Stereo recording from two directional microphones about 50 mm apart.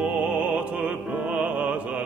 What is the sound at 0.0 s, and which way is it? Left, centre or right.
Music, right.